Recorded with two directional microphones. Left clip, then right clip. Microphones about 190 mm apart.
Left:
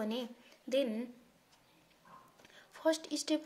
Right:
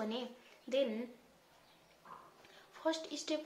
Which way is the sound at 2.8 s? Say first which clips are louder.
Left 4 dB; 45° left (ahead or behind).